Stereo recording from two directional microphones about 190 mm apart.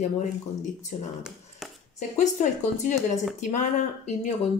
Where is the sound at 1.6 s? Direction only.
Centre (ahead or behind).